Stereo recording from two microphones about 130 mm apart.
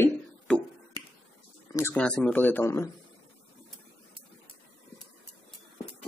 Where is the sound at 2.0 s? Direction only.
10° left (ahead or behind).